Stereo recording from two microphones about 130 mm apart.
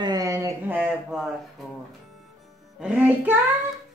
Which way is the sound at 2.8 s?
10° right (ahead or behind).